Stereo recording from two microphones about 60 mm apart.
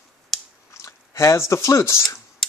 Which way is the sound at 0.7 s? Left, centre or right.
Left.